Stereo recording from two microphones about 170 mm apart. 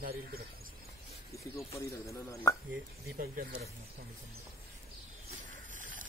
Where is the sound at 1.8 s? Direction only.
20° left (ahead or behind).